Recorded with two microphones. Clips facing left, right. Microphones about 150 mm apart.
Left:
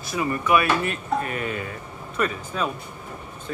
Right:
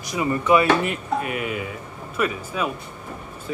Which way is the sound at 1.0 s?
5° right (ahead or behind).